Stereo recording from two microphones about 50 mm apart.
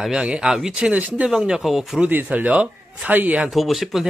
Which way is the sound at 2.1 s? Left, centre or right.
Right.